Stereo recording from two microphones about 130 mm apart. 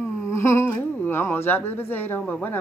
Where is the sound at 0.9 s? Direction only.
15° left (ahead or behind).